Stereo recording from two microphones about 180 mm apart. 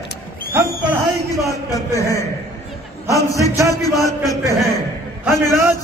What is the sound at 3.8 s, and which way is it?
Speech, 20° left (ahead or behind).